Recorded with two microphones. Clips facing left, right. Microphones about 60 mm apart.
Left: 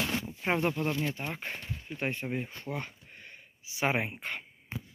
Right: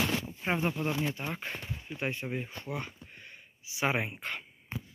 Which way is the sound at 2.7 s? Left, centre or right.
Left.